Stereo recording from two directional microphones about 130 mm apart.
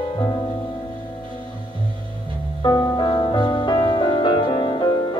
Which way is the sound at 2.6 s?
30° left (ahead or behind).